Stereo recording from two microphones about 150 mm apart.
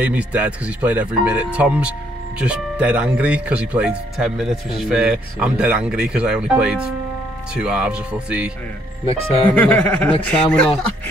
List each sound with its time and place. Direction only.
0.0 s speech: 10° right (ahead or behind)
9.0 s speech: 40° left (ahead or behind)
9.6 s speech: 10° left (ahead or behind)